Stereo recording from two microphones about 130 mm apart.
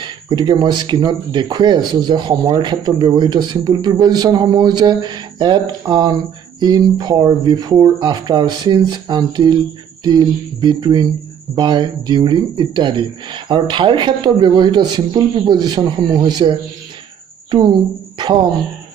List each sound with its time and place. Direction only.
0.0 s a woman's voice: 35° right (ahead or behind)